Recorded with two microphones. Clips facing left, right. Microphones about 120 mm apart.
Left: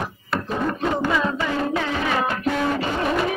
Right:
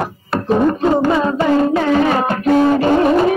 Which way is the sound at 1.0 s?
35° right (ahead or behind).